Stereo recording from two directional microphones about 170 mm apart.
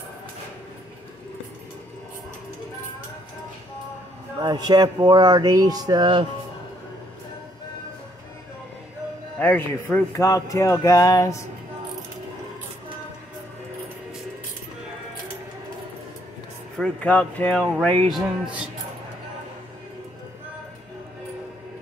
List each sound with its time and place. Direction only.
4.4 s speech: 25° right (ahead or behind)
9.4 s speech: 10° left (ahead or behind)
16.7 s speech: 5° left (ahead or behind)